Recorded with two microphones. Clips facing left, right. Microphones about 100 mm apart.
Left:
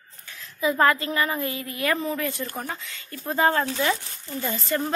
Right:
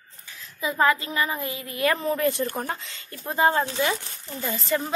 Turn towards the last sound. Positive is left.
turn(degrees=0)  # may be behind; listen again after turning